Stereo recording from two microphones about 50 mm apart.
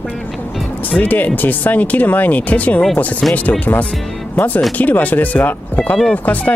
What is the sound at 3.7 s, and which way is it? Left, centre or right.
Speech, left.